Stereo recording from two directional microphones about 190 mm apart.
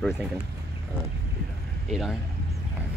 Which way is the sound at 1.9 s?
Centre (ahead or behind).